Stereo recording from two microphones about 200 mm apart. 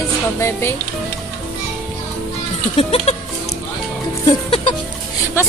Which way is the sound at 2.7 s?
30° left (ahead or behind).